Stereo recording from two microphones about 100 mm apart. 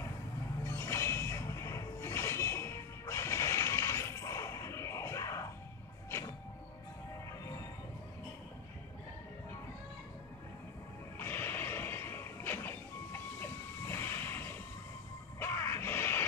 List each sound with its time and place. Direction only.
0.7 s a sound: 25° left (ahead or behind)
6.0 s train: 25° left (ahead or behind)
11.1 s music: 20° left (ahead or behind)